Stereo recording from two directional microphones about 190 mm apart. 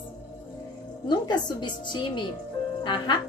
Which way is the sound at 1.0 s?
25° left (ahead or behind).